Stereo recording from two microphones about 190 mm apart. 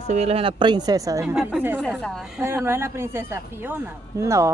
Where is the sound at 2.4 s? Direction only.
15° right (ahead or behind).